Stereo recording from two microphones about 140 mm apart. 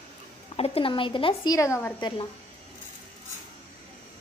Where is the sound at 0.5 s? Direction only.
45° left (ahead or behind).